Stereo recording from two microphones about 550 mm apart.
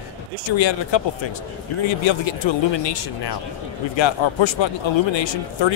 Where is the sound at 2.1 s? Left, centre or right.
Left.